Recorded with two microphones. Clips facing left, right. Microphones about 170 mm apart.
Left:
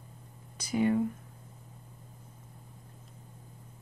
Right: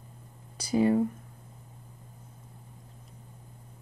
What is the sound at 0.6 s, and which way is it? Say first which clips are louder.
Speech: right 3 dB; 35° right (ahead or behind).